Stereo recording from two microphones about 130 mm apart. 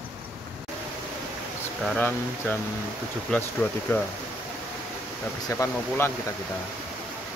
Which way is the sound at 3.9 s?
20° left (ahead or behind).